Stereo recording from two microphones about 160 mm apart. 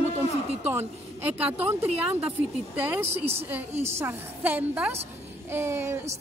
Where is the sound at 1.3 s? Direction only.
10° right (ahead or behind).